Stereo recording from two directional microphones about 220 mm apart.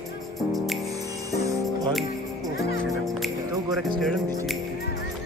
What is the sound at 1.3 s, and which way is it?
Music, 15° right (ahead or behind).